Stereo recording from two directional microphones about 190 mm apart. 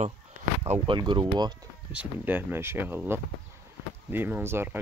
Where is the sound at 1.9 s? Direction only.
10° right (ahead or behind).